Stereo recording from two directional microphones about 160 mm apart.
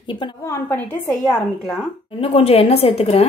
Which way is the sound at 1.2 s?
Centre (ahead or behind).